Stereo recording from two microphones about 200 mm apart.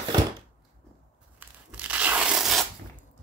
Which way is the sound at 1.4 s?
5° right (ahead or behind).